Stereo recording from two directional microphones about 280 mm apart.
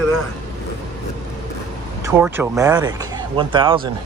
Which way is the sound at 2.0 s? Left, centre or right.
Centre.